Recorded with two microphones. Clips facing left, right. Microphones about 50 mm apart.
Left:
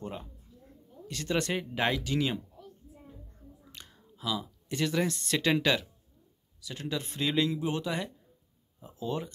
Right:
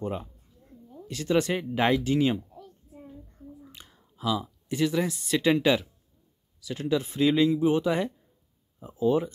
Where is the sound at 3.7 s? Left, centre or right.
Centre.